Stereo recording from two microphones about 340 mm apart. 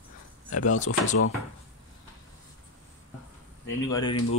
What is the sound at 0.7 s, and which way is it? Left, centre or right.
Speech, left.